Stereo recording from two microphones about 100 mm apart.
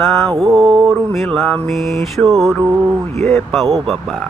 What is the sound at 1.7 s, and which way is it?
Speech, centre (ahead or behind).